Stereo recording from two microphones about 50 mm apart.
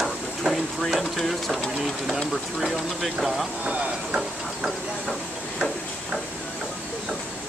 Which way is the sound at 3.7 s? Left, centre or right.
Right.